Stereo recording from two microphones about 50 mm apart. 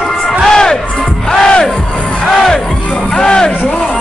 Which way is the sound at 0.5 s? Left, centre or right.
Centre.